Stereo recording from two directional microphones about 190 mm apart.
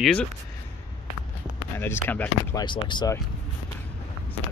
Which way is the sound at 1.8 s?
10° left (ahead or behind).